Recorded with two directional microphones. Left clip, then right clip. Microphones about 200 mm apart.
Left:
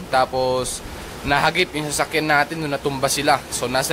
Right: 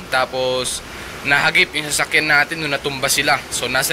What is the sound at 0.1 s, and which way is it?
Speech, 25° left (ahead or behind).